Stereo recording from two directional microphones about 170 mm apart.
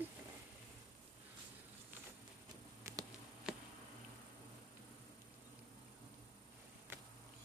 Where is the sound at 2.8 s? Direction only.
15° right (ahead or behind).